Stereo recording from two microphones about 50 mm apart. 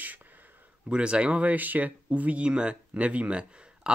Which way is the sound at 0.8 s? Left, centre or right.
Right.